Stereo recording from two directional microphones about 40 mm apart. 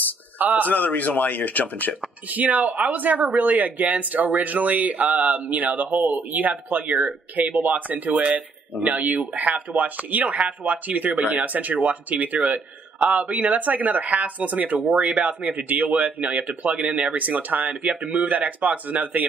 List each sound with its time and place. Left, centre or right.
0.4 s a man's voice: right
0.7 s speech: left
2.2 s speech: right